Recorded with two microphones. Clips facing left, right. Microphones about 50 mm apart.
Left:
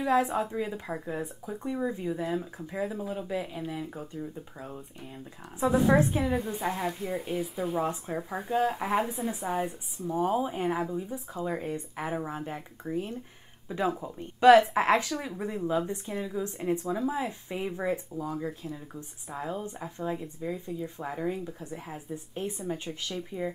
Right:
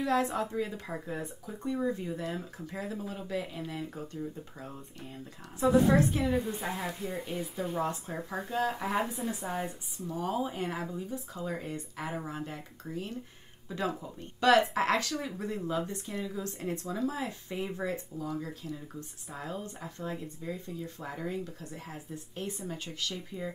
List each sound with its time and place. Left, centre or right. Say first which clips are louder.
0.0 s speech: left 3 dB; centre
6.2 s a woman's voice: left 2 dB; centre
7.8 s speech: left 3 dB; centre